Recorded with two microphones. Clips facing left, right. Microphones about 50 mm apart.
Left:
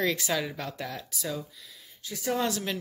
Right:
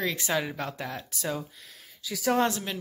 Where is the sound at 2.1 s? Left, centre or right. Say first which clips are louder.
Right 4 dB; right.